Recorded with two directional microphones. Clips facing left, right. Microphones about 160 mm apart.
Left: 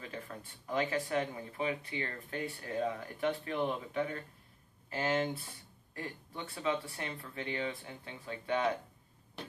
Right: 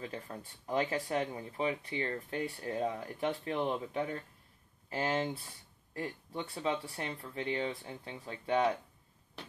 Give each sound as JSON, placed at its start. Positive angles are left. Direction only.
{"t": 0.7, "sound": "speech", "side_deg": -30}